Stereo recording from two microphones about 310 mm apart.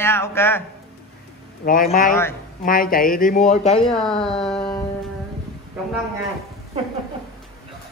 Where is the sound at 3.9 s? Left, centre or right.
Centre.